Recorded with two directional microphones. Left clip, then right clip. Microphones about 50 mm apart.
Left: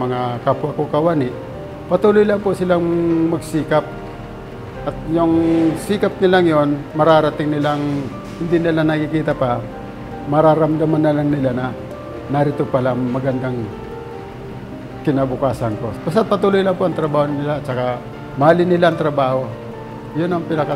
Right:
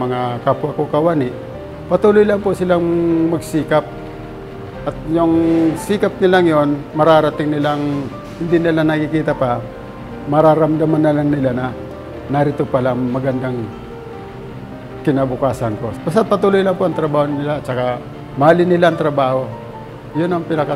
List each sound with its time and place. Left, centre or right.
0.0 s a man's voice: right
4.8 s a man's voice: centre
5.7 s a man's voice: right
15.0 s a man's voice: right
16.1 s a man's voice: right